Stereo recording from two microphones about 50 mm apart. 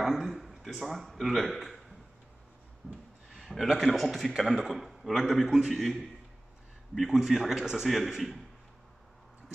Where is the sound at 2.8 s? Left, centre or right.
Left.